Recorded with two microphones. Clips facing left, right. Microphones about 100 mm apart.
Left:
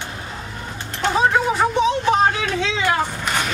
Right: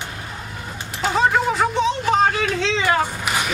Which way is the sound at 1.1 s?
Centre (ahead or behind).